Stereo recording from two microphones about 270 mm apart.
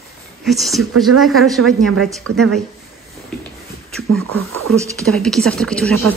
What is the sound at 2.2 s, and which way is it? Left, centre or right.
Speech, right.